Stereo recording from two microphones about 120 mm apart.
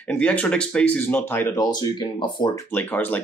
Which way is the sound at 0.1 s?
10° left (ahead or behind).